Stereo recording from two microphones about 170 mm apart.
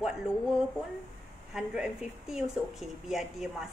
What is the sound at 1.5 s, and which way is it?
Speech, 5° right (ahead or behind).